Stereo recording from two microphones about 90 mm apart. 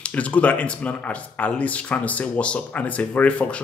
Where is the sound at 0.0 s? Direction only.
15° left (ahead or behind).